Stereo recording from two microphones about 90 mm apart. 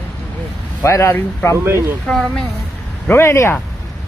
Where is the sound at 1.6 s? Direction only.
30° right (ahead or behind).